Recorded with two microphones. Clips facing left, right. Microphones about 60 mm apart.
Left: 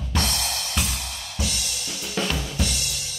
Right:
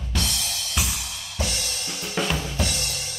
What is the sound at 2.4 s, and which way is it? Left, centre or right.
Drum kit, right.